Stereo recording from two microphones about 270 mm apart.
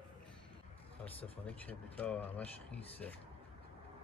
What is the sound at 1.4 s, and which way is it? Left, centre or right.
Speech, centre.